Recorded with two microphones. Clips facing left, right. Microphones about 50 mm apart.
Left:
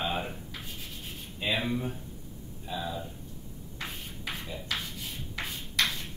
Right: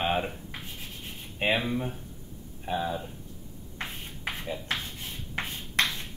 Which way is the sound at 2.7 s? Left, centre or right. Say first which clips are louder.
Right 6 dB; right.